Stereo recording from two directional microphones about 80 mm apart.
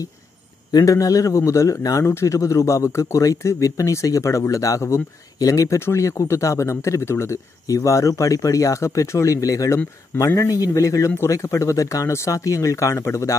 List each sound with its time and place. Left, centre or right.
0.7 s speech: left
7.6 s speech: left